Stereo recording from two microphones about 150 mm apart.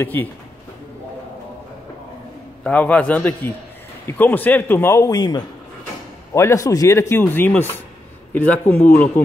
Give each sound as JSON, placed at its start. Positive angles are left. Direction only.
{"t": 0.0, "sound": "speech", "side_deg": 10}
{"t": 2.6, "sound": "speech", "side_deg": 10}